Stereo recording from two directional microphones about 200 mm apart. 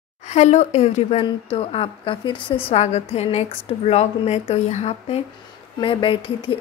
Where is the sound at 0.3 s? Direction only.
35° left (ahead or behind).